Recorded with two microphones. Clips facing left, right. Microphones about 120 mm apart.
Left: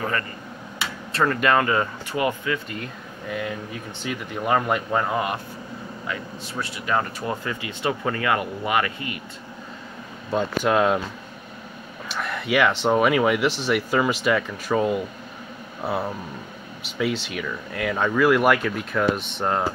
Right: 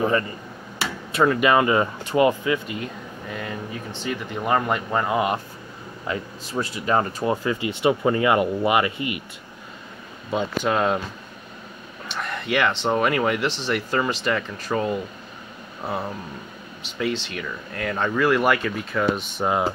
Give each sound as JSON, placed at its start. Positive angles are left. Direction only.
{"t": 1.1, "sound": "speech", "side_deg": -10}
{"t": 2.7, "sound": "speech", "side_deg": 0}
{"t": 6.6, "sound": "speech", "side_deg": -30}
{"t": 10.6, "sound": "speech", "side_deg": 0}
{"t": 12.1, "sound": "speech", "side_deg": 5}